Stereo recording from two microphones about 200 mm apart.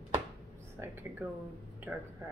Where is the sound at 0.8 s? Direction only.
10° right (ahead or behind).